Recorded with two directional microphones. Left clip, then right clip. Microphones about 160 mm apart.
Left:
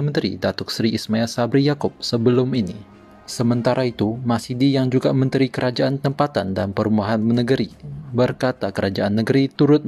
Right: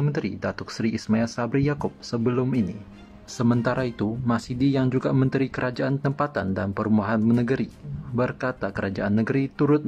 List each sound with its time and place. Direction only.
0.1 s speech: 25° left (ahead or behind)